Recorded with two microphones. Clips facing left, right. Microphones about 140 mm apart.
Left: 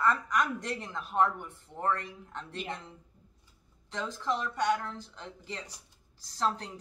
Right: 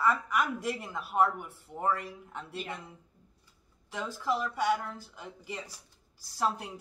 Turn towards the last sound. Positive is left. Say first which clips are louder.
# even
turn(degrees=-10)  # may be behind; listen again after turning